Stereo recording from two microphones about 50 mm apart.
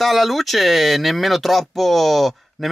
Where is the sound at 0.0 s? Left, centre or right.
Centre.